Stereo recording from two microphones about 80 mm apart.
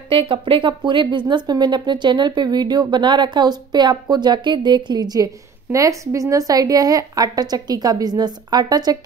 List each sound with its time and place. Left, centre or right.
0.3 s speech: right
1.3 s speech: right